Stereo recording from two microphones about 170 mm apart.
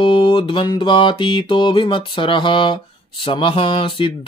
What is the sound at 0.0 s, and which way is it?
Music, 30° left (ahead or behind).